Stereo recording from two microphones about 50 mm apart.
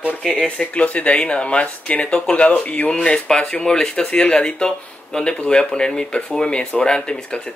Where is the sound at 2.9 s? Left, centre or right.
Centre.